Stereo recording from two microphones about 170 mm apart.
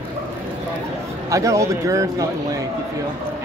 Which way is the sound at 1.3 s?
20° right (ahead or behind).